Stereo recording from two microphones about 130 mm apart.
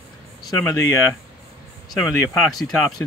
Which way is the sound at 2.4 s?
Centre (ahead or behind).